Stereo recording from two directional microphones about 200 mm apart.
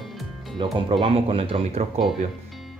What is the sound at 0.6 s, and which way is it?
Speech, 25° right (ahead or behind).